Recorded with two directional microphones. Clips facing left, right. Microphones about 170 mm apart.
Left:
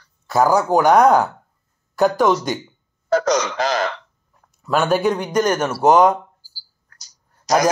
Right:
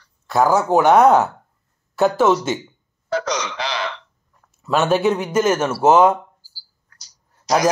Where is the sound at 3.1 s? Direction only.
45° left (ahead or behind).